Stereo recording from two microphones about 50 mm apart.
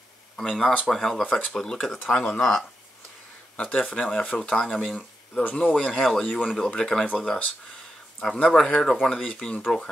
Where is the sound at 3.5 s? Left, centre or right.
Left.